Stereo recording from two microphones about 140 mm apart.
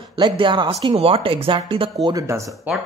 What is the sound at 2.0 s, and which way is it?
Speech, 25° right (ahead or behind).